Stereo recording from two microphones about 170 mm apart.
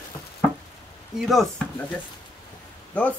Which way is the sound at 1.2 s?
Centre (ahead or behind).